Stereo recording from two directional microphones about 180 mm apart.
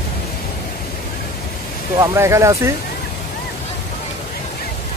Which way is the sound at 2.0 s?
15° right (ahead or behind).